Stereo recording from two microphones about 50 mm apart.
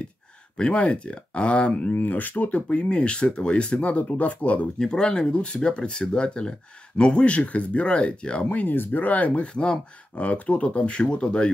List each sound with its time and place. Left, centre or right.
0.6 s speech: left
1.9 s speech: left
4.7 s speech: centre
8.5 s speech: left